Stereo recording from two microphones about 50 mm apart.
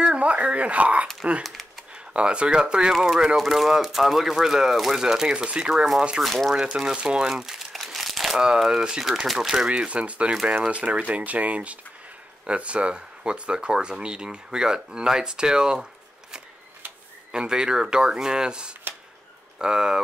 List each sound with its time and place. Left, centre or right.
0.0 s a sound: right
1.4 s typing: centre
2.1 s speech: right
6.2 s speech: centre
6.5 s speech: centre
9.7 s speech: right